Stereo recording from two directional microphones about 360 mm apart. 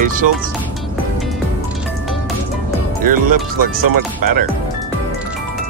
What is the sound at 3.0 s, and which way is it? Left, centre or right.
Speech, right.